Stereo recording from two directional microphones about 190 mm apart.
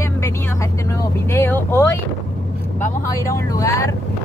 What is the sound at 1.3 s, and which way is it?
Speech, 10° left (ahead or behind).